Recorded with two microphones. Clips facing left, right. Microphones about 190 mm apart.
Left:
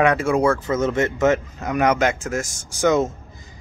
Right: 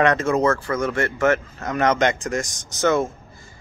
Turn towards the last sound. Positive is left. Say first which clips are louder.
# left 2 dB
turn(degrees=15)  # may be behind; listen again after turning